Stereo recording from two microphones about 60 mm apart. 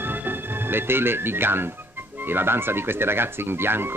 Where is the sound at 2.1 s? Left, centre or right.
Right.